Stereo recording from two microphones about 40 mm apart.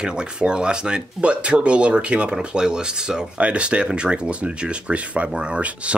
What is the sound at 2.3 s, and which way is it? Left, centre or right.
Speech, centre.